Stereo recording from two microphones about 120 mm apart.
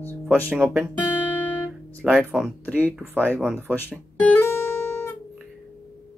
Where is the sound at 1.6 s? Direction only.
10° left (ahead or behind).